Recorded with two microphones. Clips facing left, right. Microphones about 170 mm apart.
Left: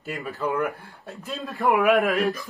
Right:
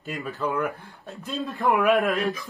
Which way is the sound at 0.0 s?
Centre (ahead or behind).